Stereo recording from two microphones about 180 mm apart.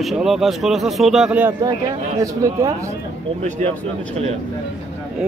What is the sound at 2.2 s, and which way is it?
Speech, 20° right (ahead or behind).